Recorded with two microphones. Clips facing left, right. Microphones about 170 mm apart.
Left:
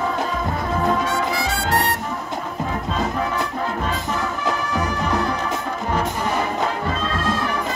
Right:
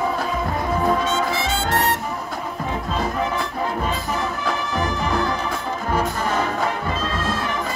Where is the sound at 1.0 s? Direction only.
25° right (ahead or behind).